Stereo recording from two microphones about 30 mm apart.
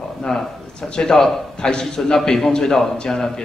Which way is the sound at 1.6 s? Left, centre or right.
Left.